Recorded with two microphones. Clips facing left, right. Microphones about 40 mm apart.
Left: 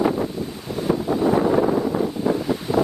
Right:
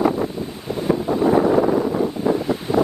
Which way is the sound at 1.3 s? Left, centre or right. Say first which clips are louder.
Right 3 dB; centre.